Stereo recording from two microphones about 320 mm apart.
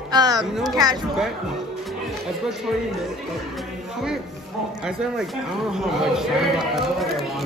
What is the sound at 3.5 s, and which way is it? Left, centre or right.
Music, centre.